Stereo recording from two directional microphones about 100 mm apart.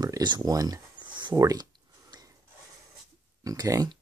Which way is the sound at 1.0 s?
50° right (ahead or behind).